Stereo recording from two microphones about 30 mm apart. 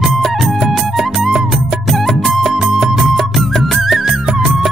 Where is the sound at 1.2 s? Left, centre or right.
Centre.